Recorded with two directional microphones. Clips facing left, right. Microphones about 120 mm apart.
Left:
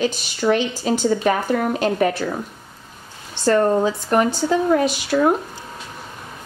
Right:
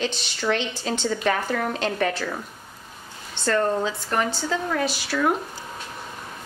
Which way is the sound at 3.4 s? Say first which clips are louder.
Left 6 dB; 20° left (ahead or behind).